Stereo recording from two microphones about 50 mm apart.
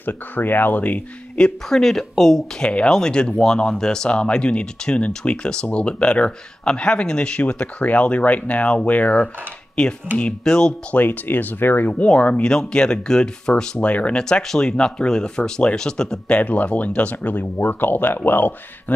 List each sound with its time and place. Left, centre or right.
0.0 s speech: left
1.4 s speech: centre
2.6 s speech: left
9.8 s speech: centre
10.9 s speech: left
11.9 s speech: left
13.8 s speech: left
14.1 s speech: centre
16.3 s speech: left